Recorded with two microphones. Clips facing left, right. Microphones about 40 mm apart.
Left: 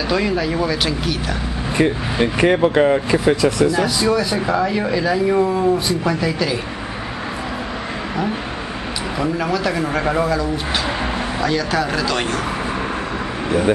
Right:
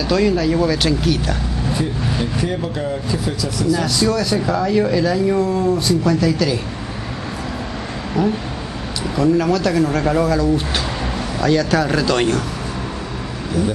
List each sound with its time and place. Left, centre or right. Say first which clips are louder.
0.1 s speech: right 4 dB; centre
2.2 s speech: left 7 dB; left
3.7 s speech: left 1 dB; centre
9.1 s speech: right 5 dB; centre